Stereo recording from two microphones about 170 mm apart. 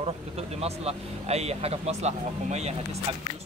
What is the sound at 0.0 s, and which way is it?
Speech, 35° right (ahead or behind).